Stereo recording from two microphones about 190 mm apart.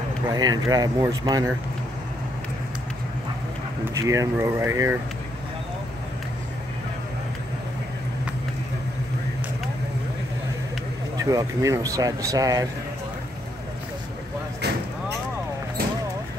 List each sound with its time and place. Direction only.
0.3 s speech: 20° right (ahead or behind)
3.9 s speech: 15° right (ahead or behind)
11.1 s speech: 15° right (ahead or behind)